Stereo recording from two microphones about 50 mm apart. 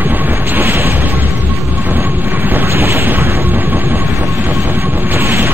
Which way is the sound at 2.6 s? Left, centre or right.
Right.